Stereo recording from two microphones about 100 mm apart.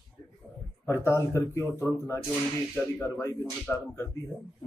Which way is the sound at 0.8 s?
25° left (ahead or behind).